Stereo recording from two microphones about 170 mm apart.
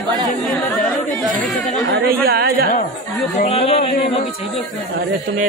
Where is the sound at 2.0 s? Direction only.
65° right (ahead or behind).